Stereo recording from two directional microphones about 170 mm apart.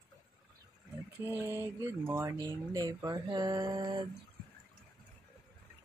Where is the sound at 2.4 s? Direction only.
20° right (ahead or behind).